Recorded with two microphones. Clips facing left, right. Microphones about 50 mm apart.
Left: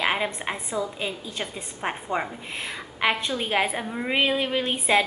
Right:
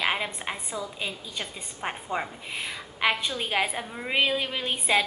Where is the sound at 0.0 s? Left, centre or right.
Centre.